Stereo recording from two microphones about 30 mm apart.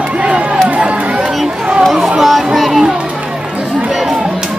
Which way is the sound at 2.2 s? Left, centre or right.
Centre.